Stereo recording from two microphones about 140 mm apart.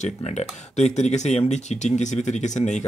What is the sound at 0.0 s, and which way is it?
Speech, 55° left (ahead or behind).